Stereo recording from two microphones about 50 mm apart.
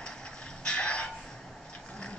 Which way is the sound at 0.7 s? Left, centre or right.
Left.